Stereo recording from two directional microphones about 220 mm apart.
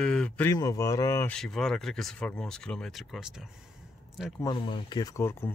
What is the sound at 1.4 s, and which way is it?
Speech, centre (ahead or behind).